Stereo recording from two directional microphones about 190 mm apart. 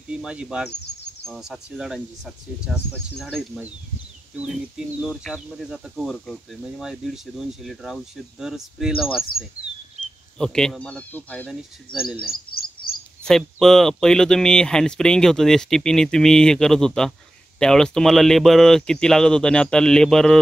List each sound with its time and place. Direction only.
0.1 s speech: 5° right (ahead or behind)
10.4 s speech: 5° left (ahead or behind)
12.3 s bird: 50° left (ahead or behind)
13.2 s speech: centre (ahead or behind)